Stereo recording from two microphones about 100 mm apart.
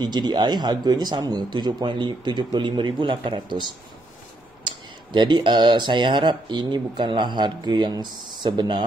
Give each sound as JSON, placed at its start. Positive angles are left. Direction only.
{"t": 0.0, "sound": "speech", "side_deg": -45}
{"t": 4.6, "sound": "speech", "side_deg": -50}